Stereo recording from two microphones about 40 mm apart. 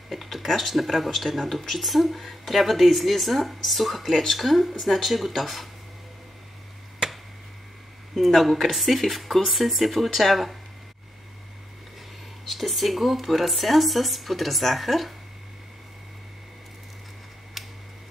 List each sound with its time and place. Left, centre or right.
0.1 s speech: centre
7.0 s chop: centre
8.1 s speech: centre
12.4 s speech: centre
17.6 s tick-tock: centre